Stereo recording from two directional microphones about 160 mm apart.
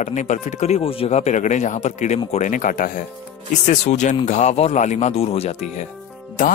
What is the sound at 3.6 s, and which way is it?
Speech, 45° left (ahead or behind).